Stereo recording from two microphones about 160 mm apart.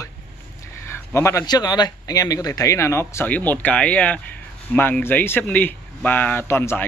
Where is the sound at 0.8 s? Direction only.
15° left (ahead or behind).